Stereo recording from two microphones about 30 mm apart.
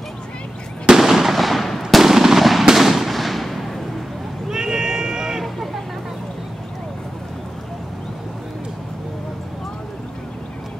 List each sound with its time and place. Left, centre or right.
0.9 s fireworks: centre
4.5 s run: right